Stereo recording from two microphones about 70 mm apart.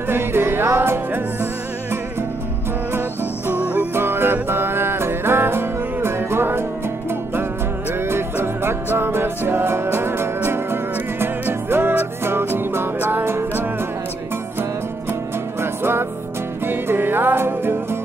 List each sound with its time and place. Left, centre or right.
0.1 s music: right
3.4 s music: right
3.9 s music: right
8.1 s music: right
15.6 s music: right